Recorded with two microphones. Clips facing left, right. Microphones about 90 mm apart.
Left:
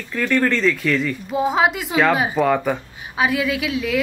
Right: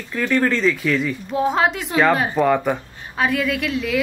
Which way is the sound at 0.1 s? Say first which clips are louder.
Even; 5° right (ahead or behind).